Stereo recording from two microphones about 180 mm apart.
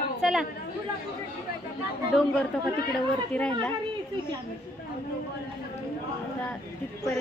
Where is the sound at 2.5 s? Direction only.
Centre (ahead or behind).